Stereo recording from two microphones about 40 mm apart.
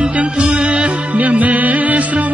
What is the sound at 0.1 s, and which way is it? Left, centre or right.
Music, right.